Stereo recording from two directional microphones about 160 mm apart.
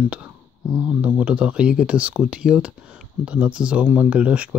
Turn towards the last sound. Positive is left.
turn(degrees=-10)  # may be behind; listen again after turning